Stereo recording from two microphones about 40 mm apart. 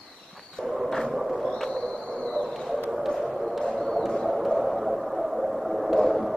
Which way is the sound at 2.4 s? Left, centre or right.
Centre.